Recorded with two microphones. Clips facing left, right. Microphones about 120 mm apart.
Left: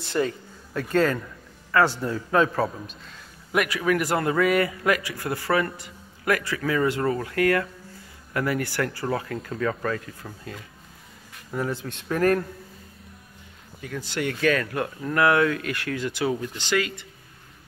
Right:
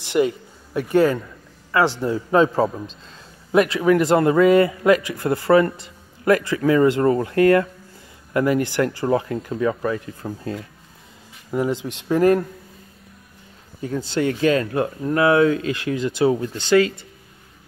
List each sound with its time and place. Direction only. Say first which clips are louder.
0.0 s a man's voice: right 6 dB; 15° right (ahead or behind)
10.2 s speech: right 10 dB; 30° right (ahead or behind)
11.5 s a man's voice: right 6 dB; 20° right (ahead or behind)
13.7 s a man's voice: right 7 dB; 30° right (ahead or behind)